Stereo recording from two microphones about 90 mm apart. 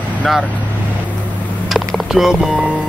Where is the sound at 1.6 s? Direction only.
Centre (ahead or behind).